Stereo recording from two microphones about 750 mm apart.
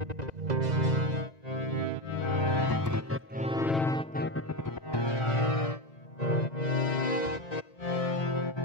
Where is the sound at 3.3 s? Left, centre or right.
Centre.